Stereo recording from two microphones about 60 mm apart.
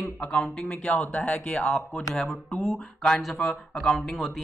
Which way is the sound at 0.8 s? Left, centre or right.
Left.